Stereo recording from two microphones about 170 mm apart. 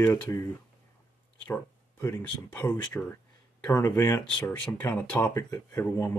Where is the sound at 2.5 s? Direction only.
10° left (ahead or behind).